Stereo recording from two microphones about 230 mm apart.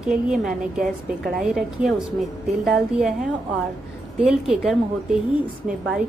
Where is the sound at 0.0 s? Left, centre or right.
Centre.